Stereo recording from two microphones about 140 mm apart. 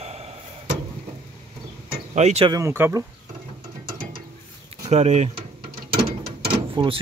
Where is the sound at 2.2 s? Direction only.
55° right (ahead or behind).